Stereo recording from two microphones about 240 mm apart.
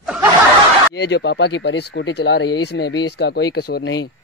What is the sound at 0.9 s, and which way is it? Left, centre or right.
Speech, left.